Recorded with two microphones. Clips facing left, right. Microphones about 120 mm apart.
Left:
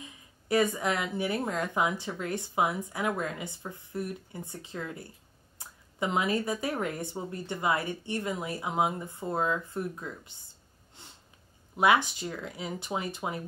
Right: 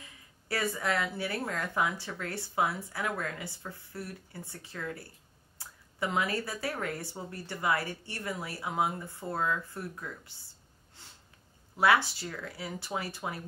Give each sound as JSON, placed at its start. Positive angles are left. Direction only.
{"t": 0.0, "sound": "a woman's voice", "side_deg": 20}
{"t": 11.0, "sound": "snort", "side_deg": 20}
{"t": 11.7, "sound": "a woman's voice", "side_deg": 20}